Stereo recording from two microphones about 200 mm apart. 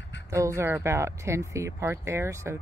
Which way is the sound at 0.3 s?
15° right (ahead or behind).